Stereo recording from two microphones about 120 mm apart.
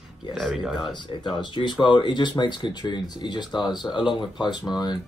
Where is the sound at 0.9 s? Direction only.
40° left (ahead or behind).